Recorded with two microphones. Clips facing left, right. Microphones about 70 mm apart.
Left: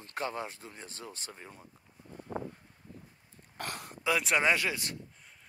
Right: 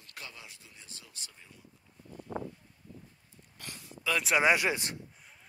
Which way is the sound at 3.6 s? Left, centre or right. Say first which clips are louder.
Left 8 dB; left.